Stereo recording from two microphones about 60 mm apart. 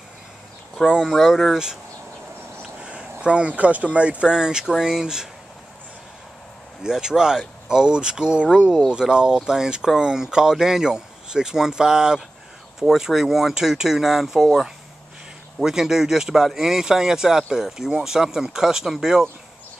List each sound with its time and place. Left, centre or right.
1.0 s speech: centre
2.8 s speech: centre
6.8 s speech: centre